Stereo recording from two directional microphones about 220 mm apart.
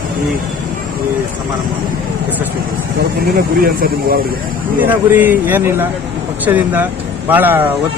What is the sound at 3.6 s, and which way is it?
Speech, 40° right (ahead or behind).